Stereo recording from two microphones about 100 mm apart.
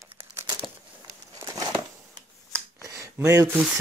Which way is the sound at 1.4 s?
30° right (ahead or behind).